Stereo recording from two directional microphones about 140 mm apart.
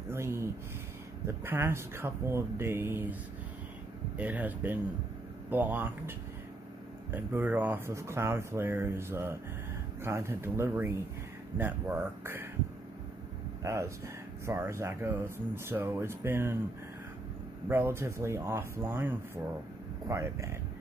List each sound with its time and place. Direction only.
0.1 s speech: 20° right (ahead or behind)
4.2 s speech: 10° right (ahead or behind)
13.7 s speech: 20° right (ahead or behind)
17.6 s speech: 15° right (ahead or behind)